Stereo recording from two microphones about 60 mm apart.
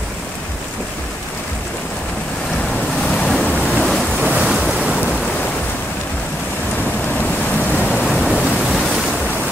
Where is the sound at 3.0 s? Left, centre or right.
Centre.